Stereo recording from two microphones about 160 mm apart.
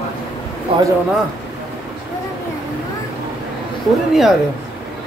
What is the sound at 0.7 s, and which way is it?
Speech, 35° right (ahead or behind).